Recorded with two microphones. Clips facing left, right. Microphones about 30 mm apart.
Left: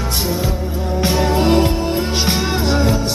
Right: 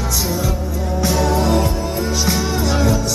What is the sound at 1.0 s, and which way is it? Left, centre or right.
Music, left.